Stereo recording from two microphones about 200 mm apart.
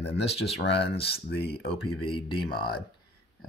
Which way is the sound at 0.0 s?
30° left (ahead or behind).